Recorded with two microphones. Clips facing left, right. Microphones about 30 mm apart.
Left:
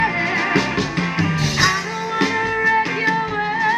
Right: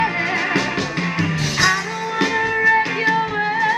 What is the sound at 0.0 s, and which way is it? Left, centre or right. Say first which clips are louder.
Music: left 1 dB; centre.